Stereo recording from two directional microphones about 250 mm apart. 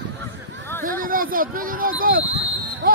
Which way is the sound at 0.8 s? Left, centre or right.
Right.